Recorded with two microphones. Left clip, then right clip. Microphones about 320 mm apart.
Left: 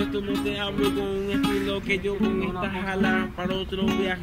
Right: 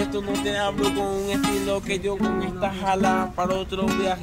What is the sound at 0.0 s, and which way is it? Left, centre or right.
Music, centre.